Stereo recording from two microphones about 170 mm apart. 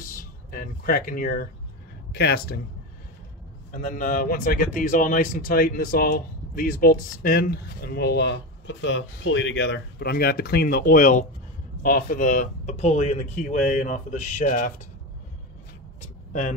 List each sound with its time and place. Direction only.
0.0 s speech: 55° left (ahead or behind)
2.1 s speech: 70° left (ahead or behind)
3.7 s speech: 50° left (ahead or behind)
16.0 s a sound: 50° left (ahead or behind)